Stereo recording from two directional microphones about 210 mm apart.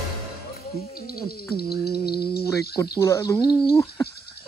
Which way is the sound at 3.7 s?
15° left (ahead or behind).